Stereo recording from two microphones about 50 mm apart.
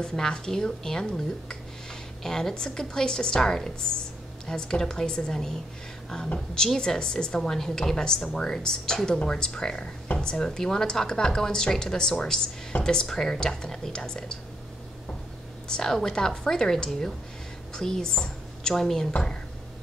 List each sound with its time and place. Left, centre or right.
0.0 s speech: centre
7.3 s speech: centre
15.7 s a woman's voice: centre